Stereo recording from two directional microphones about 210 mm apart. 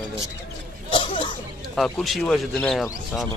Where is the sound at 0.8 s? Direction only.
25° left (ahead or behind).